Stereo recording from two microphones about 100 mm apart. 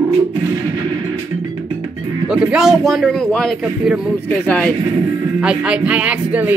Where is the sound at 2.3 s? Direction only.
5° right (ahead or behind); by 4.7 s 15° left (ahead or behind).